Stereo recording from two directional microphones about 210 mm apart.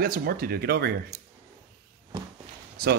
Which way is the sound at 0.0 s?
45° right (ahead or behind).